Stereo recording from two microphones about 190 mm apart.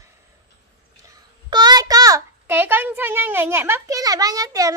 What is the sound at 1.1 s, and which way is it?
A child's voice, 20° right (ahead or behind).